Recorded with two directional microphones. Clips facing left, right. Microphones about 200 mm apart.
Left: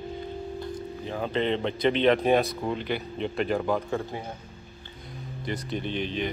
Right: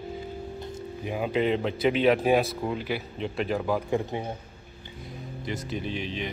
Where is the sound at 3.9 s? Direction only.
20° right (ahead or behind).